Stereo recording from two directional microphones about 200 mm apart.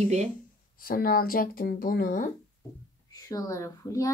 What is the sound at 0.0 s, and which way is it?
Speech, 35° right (ahead or behind).